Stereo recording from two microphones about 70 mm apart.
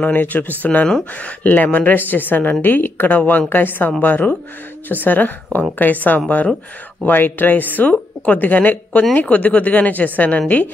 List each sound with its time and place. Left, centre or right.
0.0 s speech: left